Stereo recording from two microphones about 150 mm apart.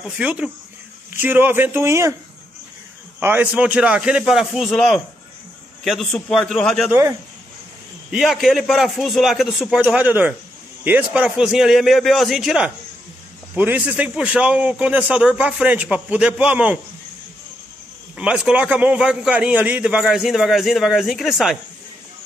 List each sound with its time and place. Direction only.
0.2 s a man's voice: 10° right (ahead or behind)
3.2 s a man's voice: 15° right (ahead or behind); by 6.9 s 5° left (ahead or behind)
6.9 s a man's voice: 20° right (ahead or behind)
8.1 s a man's voice: centre (ahead or behind)
18.1 s a man's voice: 5° right (ahead or behind)